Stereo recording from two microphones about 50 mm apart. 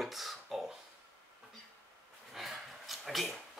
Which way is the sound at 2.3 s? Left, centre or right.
Centre.